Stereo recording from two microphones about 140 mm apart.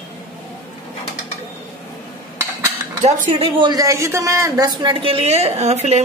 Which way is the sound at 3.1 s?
50° right (ahead or behind).